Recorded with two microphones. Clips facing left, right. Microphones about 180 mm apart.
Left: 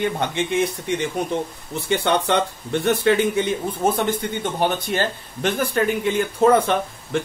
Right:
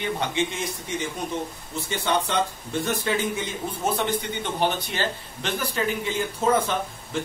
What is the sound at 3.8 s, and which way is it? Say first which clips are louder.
A man's voice: left 4 dB; 50° left (ahead or behind).